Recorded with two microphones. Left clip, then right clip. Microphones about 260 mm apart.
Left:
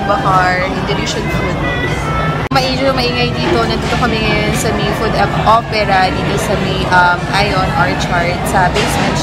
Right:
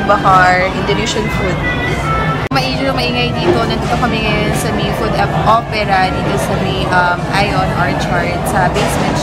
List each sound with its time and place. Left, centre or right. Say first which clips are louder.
5.5 s speech: left 1 dB; centre